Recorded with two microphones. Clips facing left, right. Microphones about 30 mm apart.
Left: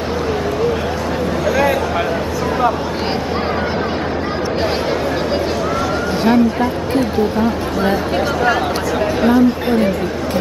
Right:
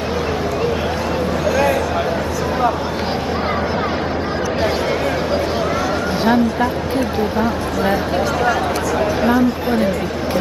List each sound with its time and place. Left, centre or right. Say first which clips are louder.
6.2 s a sound: left 2 dB; centre
7.3 s speech: left 1 dB; centre
9.2 s speech: left 5 dB; centre